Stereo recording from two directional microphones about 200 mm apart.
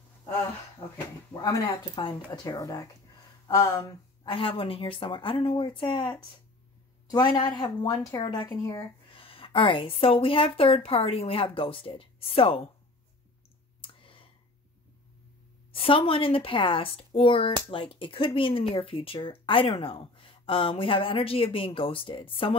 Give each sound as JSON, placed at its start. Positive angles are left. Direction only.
{"t": 1.3, "sound": "speech", "side_deg": 20}
{"t": 4.2, "sound": "speech", "side_deg": 25}
{"t": 13.7, "sound": "clicking", "side_deg": 25}
{"t": 15.7, "sound": "speech", "side_deg": 30}